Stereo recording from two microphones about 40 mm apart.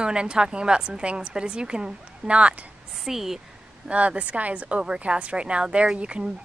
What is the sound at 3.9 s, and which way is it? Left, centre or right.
A woman's voice, right.